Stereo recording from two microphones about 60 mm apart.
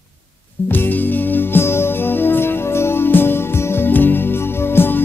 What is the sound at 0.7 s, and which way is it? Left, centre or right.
Music, left.